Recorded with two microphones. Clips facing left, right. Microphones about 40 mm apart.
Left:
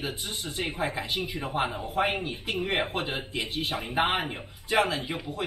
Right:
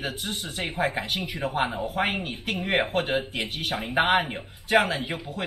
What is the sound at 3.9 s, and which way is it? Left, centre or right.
A man's voice, right.